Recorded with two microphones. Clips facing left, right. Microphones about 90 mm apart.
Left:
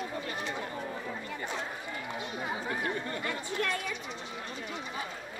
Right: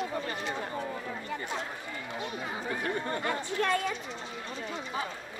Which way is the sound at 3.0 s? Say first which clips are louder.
Right 4 dB; 35° right (ahead or behind).